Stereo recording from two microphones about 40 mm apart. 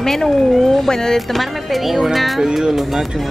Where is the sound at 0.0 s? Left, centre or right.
Centre.